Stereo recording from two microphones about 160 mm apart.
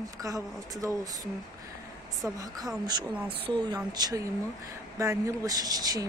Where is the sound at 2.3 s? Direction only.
25° right (ahead or behind).